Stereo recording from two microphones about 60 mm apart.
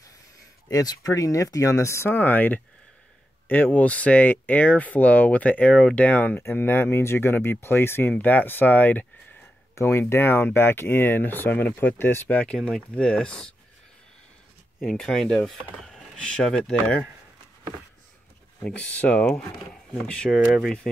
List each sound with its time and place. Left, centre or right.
0.7 s speech: left
2.1 s speech: left
6.5 s speech: left
8.2 s speech: left
9.8 s speech: left
12.6 s speech: centre
14.8 s speech: centre
18.6 s speech: centre
20.5 s speech: centre